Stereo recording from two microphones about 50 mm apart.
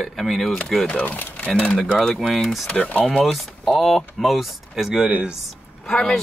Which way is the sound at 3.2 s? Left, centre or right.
Centre.